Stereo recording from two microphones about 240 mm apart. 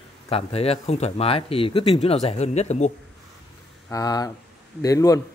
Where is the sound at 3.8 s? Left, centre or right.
Centre.